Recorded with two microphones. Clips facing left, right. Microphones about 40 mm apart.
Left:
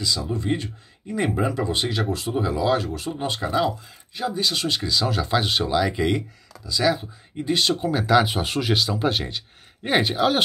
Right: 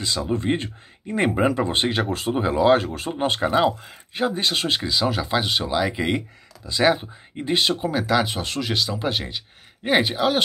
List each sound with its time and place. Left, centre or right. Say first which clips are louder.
0.0 s speech: right 2 dB; right; by 6.2 s centre
6.6 s speech: right 2 dB; right
7.8 s speech: left 2 dB; centre